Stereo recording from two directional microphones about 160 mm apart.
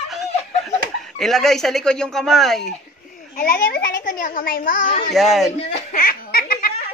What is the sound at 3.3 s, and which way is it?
A woman's voice, 65° left (ahead or behind).